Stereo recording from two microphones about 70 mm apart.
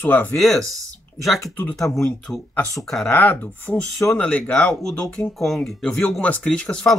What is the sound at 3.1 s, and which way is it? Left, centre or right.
Speech, left.